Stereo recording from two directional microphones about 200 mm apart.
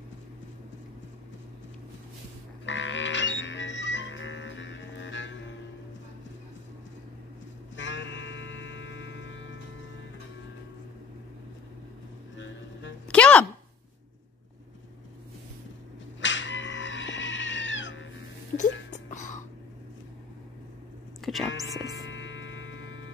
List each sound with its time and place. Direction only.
2.6 s music: 70° left (ahead or behind)
7.7 s music: 65° left (ahead or behind)
12.4 s music: 65° left (ahead or behind)
13.1 s a sound: 5° left (ahead or behind)
16.2 s cat: 65° left (ahead or behind)
18.9 s music: 40° left (ahead or behind)
21.2 s music: centre (ahead or behind)
21.5 s music: 70° left (ahead or behind)